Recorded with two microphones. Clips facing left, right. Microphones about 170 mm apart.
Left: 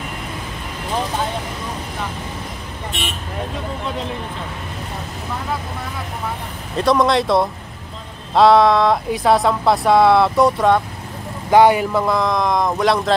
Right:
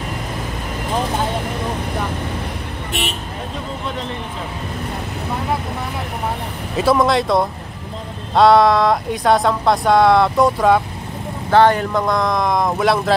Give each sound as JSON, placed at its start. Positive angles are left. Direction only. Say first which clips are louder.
{"t": 6.8, "sound": "speech", "louder": "even", "side_deg": -5}
{"t": 11.5, "sound": "speech", "louder": "left 1 dB", "side_deg": 10}